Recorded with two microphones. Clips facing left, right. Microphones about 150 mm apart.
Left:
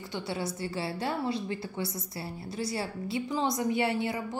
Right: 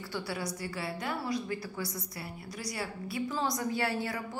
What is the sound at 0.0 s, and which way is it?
A woman's voice, 20° left (ahead or behind).